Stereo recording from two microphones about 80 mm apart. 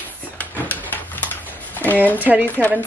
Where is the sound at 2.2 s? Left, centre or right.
Right.